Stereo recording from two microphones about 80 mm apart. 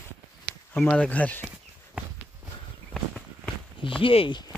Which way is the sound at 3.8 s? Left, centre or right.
Left.